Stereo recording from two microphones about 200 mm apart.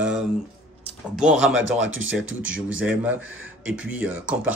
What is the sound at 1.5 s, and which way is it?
Speech, 70° right (ahead or behind).